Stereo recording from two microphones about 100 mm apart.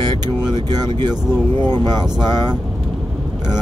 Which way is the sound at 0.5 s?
45° right (ahead or behind).